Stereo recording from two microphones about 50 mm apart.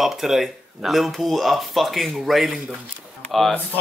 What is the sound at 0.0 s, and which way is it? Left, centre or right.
Speech, centre.